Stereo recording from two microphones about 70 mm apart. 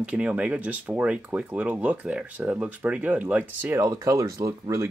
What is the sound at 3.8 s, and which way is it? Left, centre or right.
Speech, right.